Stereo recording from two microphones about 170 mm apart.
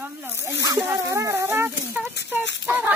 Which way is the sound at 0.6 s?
15° right (ahead or behind).